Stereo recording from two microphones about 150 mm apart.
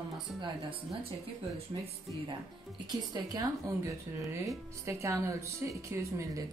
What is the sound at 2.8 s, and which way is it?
A woman's voice, 25° right (ahead or behind).